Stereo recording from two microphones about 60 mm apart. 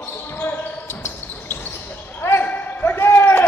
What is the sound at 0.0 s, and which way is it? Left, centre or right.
Basketball bounce, left.